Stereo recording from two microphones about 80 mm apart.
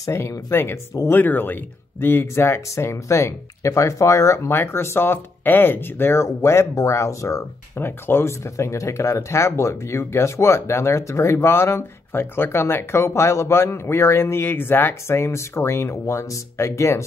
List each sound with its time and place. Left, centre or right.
0.1 s speech: left
7.7 s speech: left